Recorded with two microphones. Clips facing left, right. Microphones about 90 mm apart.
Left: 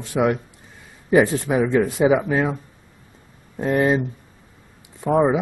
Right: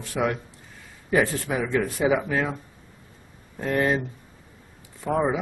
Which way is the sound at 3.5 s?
20° left (ahead or behind).